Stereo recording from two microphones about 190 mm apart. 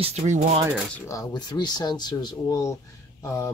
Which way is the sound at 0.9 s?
15° left (ahead or behind).